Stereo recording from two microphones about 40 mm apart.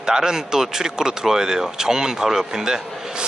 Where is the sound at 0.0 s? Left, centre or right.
Centre.